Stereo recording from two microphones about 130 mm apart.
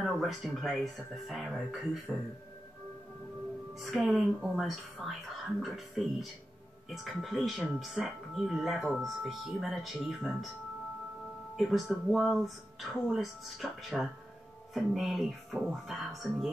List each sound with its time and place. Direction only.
0.0 s speech: centre (ahead or behind)
2.1 s speech: 25° right (ahead or behind)
3.8 s speech: centre (ahead or behind)
11.5 s speech: centre (ahead or behind)